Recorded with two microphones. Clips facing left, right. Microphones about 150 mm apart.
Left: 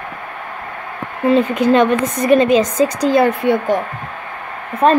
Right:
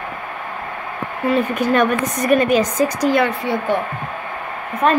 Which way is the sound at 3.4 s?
50° left (ahead or behind).